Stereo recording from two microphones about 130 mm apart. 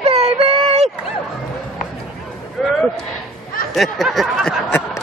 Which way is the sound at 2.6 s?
Centre (ahead or behind).